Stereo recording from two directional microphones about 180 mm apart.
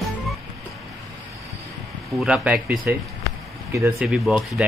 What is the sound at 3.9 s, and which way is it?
Speech, centre (ahead or behind).